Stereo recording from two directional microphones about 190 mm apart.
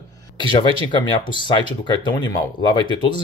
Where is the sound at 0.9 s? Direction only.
25° left (ahead or behind).